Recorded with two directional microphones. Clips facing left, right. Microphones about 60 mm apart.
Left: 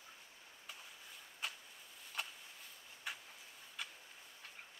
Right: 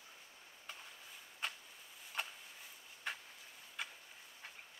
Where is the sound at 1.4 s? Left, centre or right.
Centre.